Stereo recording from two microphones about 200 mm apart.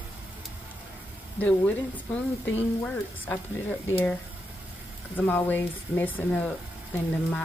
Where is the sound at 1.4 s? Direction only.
10° left (ahead or behind).